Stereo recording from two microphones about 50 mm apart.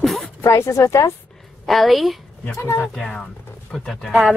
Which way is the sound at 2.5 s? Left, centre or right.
Left.